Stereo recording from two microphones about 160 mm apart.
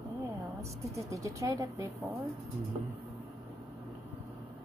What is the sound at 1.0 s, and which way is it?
Speech, 20° right (ahead or behind).